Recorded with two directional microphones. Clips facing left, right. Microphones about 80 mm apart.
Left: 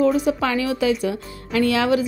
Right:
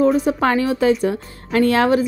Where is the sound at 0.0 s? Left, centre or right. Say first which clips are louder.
Right 3 dB; right.